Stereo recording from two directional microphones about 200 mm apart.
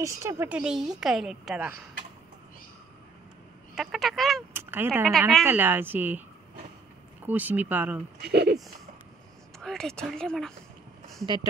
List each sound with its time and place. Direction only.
0.0 s a woman's voice: 15° right (ahead or behind)
3.7 s a woman's voice: centre (ahead or behind)
4.6 s a woman's voice: 10° right (ahead or behind)
7.2 s a woman's voice: 10° right (ahead or behind)
8.2 s speech: 55° right (ahead or behind)
9.6 s a woman's voice: centre (ahead or behind)